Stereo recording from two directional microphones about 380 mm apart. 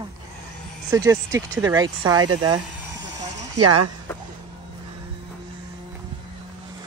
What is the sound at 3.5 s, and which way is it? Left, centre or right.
Speech, right.